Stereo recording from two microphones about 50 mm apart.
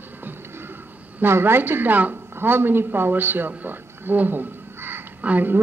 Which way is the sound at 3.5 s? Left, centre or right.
Right.